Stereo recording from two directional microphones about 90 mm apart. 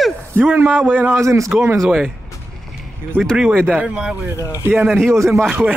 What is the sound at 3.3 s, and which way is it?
A man's voice, 10° right (ahead or behind).